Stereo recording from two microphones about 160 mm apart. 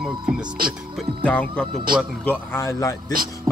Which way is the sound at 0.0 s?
5° right (ahead or behind).